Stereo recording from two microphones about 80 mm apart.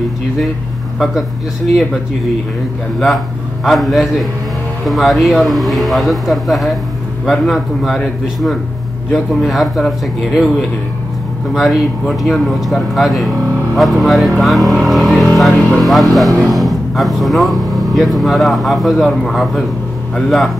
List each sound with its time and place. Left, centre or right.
0.9 s speech: centre
3.6 s speech: centre
11.5 s speech: centre